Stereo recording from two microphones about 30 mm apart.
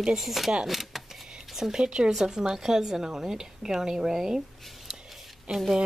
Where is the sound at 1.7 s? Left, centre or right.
Right; by 4.3 s centre.